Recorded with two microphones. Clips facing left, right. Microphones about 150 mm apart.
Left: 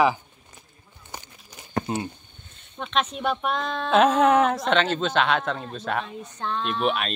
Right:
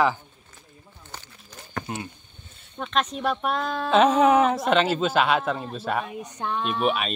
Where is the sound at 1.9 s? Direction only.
25° left (ahead or behind).